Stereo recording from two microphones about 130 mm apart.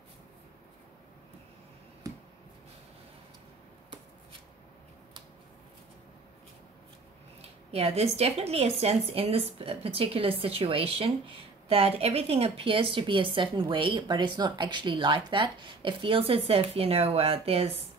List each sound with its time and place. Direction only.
7.4 s speech: 50° right (ahead or behind)